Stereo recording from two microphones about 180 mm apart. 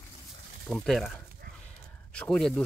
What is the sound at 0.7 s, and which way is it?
Speech, centre (ahead or behind).